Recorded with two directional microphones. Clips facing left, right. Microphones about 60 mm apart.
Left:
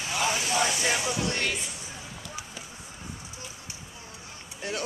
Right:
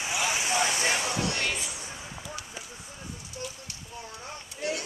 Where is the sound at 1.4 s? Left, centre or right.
Centre.